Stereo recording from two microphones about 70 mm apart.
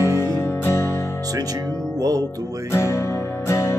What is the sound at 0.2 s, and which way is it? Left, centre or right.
Music, left.